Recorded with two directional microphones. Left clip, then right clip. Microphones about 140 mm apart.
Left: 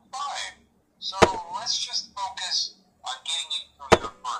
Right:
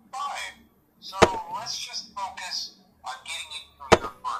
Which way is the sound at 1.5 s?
30° left (ahead or behind).